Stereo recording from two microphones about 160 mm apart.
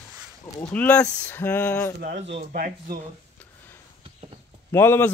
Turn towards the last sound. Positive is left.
turn(degrees=15)  # may be behind; listen again after turning